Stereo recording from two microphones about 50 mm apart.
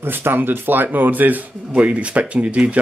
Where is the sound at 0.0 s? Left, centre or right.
Right.